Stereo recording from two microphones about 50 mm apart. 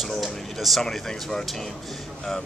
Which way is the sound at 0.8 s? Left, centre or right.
Centre.